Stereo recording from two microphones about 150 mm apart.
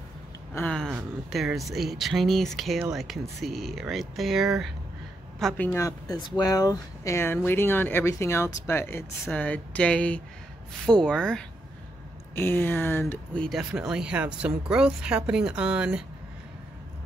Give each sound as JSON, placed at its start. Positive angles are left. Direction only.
{"t": 0.6, "sound": "a sound", "side_deg": 5}
{"t": 0.8, "sound": "speech", "side_deg": -5}
{"t": 5.6, "sound": "speech", "side_deg": 15}
{"t": 13.6, "sound": "speech", "side_deg": -5}